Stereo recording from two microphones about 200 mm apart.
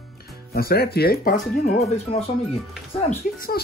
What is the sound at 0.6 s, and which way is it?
Speech, 50° left (ahead or behind).